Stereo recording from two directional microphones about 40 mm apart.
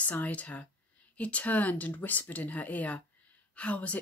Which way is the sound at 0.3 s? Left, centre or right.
Left.